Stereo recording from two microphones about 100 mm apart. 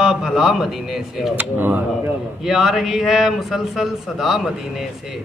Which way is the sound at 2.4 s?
Centre (ahead or behind).